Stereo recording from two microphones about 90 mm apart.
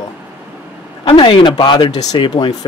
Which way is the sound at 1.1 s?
70° left (ahead or behind).